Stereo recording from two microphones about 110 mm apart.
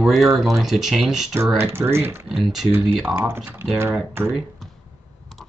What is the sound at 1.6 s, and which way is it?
Speech, 25° right (ahead or behind).